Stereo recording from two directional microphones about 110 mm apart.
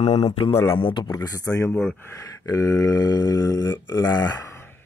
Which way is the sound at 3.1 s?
35° left (ahead or behind).